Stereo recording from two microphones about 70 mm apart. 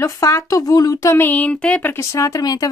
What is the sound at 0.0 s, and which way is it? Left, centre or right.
Speech, left.